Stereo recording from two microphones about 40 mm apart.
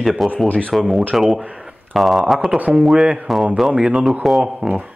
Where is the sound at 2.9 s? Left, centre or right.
Right.